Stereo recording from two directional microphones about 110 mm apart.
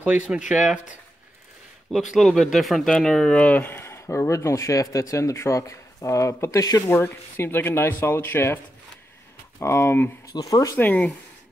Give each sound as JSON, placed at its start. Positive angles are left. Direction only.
{"t": 0.0, "sound": "speech", "side_deg": -10}
{"t": 1.9, "sound": "speech", "side_deg": 0}
{"t": 9.6, "sound": "speech", "side_deg": 25}
{"t": 10.2, "sound": "speech", "side_deg": 35}
{"t": 10.8, "sound": "speech", "side_deg": 15}